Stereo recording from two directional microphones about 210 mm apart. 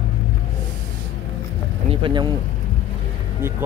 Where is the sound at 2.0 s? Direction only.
20° right (ahead or behind).